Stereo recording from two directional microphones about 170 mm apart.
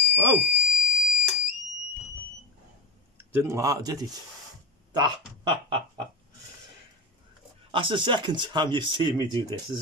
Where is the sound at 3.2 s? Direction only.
15° right (ahead or behind).